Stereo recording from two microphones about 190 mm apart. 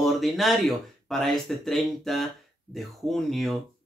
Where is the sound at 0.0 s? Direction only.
Centre (ahead or behind).